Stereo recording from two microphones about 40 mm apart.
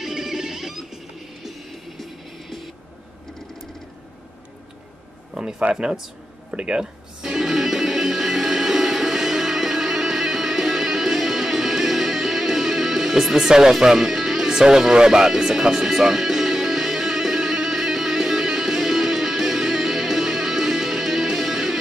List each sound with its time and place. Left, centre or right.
0.0 s music: centre
5.3 s a sound: centre
5.7 s speech: right
7.3 s music: centre